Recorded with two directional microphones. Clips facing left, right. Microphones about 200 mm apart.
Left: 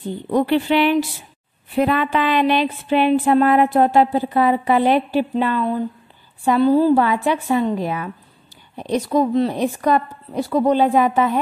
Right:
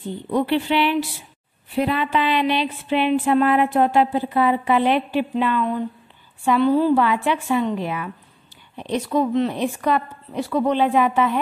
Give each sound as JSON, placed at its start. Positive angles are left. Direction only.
{"t": 0.3, "sound": "speech", "side_deg": 45}